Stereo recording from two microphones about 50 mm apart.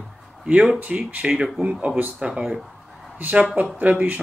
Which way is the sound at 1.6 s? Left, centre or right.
Right.